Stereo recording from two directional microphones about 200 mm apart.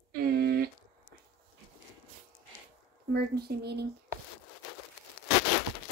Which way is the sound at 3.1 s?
50° right (ahead or behind).